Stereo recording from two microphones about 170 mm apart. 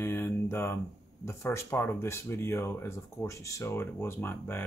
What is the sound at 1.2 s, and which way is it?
Speech, 15° left (ahead or behind).